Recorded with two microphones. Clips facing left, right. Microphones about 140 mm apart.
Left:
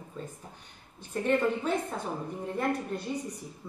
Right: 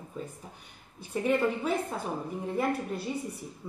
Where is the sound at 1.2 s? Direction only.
5° right (ahead or behind).